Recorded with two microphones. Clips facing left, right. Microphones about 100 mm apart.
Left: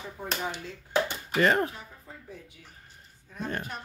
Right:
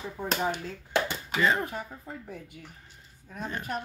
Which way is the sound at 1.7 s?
55° right (ahead or behind).